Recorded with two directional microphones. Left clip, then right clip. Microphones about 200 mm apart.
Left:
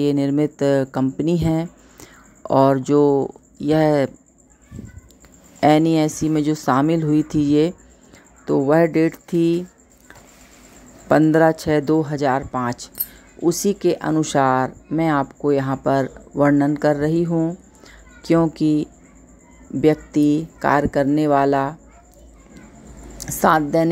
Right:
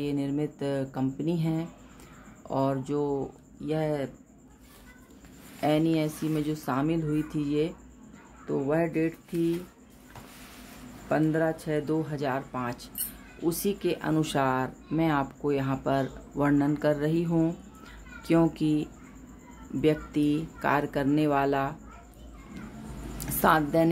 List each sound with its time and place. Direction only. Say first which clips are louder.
0.0 s speech: left 12 dB; 45° left (ahead or behind)
5.6 s speech: left 11 dB; 45° left (ahead or behind)
11.1 s speech: left 12 dB; 50° left (ahead or behind); by 21.7 s 35° left (ahead or behind)
23.4 s speech: left 7 dB; 30° left (ahead or behind)